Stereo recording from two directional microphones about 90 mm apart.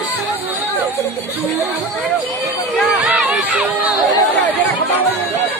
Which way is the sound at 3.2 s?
15° right (ahead or behind).